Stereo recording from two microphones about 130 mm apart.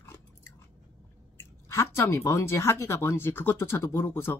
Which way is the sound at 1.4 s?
20° left (ahead or behind).